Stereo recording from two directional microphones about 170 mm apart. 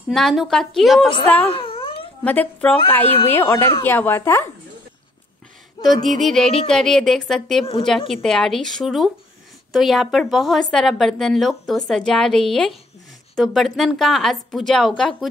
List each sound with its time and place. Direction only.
0.1 s a woman's voice: centre (ahead or behind)
1.2 s a woman's voice: 10° left (ahead or behind)
1.5 s cat: 30° left (ahead or behind)
2.2 s a woman's voice: 10° left (ahead or behind)
5.8 s a sound: 25° left (ahead or behind)
6.2 s a woman's voice: centre (ahead or behind)